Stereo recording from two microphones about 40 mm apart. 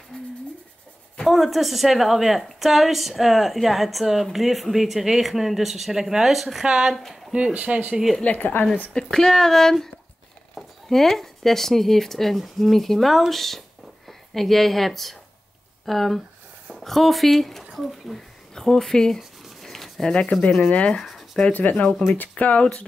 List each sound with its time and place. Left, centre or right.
0.1 s a sound: left
1.2 s a woman's voice: centre
7.3 s speech: right
8.2 s a woman's voice: left
8.9 s a woman's voice: centre
18.5 s speech: centre
19.4 s writing: centre
20.1 s speech: left
21.0 s a sound: centre
21.5 s speech: left